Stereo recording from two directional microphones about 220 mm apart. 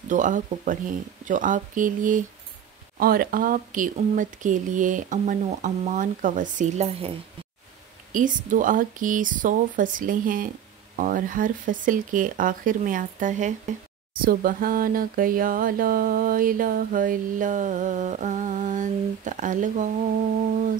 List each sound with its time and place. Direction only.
0.1 s speech: 35° right (ahead or behind)
8.1 s speech: 35° right (ahead or behind)